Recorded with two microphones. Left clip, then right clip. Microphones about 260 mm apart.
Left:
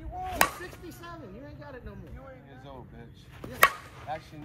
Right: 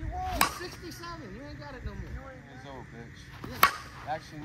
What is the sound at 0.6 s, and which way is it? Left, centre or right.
Speech, right.